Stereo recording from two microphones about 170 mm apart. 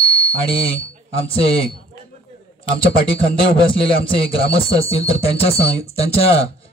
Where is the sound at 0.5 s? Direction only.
35° left (ahead or behind).